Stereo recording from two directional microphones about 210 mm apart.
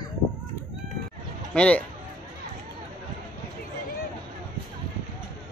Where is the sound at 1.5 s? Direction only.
5° left (ahead or behind).